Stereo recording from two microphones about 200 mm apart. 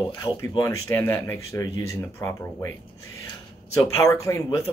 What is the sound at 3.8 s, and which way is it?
Speech, 15° left (ahead or behind).